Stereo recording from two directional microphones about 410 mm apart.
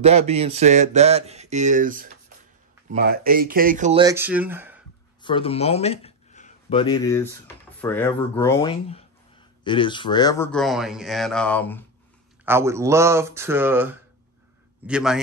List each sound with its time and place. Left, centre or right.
0.3 s speech: centre
5.2 s speech: centre
12.4 s speech: centre